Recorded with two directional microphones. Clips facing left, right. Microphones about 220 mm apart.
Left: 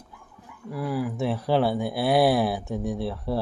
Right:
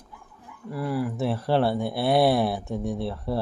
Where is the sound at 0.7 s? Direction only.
Centre (ahead or behind).